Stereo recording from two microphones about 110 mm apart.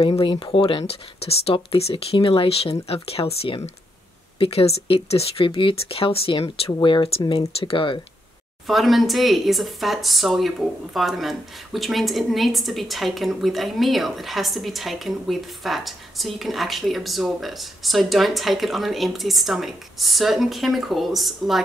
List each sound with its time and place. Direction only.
0.2 s speech: 50° left (ahead or behind)
8.6 s speech: centre (ahead or behind)